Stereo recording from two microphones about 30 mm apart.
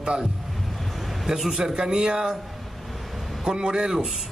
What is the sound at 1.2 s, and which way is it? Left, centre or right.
Speech, centre.